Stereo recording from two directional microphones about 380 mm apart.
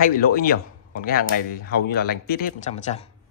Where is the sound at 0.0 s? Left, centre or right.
Left.